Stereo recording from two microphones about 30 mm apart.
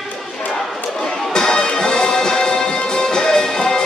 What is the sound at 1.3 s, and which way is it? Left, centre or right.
Music, left.